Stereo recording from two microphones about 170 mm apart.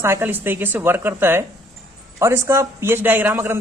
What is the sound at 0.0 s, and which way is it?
A woman's voice, 15° right (ahead or behind).